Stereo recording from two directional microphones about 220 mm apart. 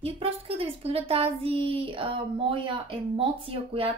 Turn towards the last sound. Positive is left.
turn(degrees=-25)  # may be behind; listen again after turning